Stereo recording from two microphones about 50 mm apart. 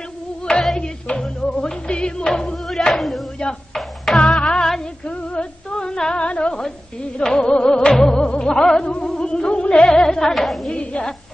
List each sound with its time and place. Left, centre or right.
0.4 s music: centre
5.0 s music: left; by 10.7 s centre
10.7 s a woman's voice: left